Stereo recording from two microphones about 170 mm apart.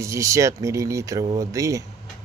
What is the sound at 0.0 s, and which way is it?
Speech, 15° right (ahead or behind).